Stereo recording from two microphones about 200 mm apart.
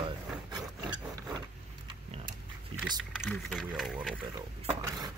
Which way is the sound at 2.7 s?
25° right (ahead or behind).